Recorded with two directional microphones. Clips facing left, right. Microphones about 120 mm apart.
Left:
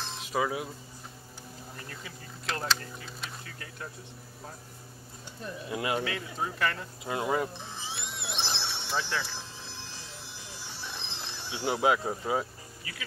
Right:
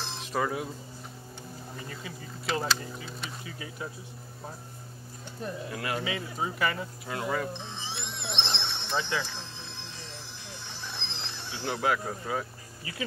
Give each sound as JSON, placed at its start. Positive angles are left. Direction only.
{"t": 0.0, "sound": "a sound", "side_deg": 0}
{"t": 1.8, "sound": "speech", "side_deg": 0}
{"t": 5.7, "sound": "speech", "side_deg": 20}
{"t": 6.0, "sound": "speech", "side_deg": -5}
{"t": 7.1, "sound": "speech", "side_deg": 20}
{"t": 7.6, "sound": "music", "side_deg": 5}
{"t": 11.5, "sound": "speech", "side_deg": 20}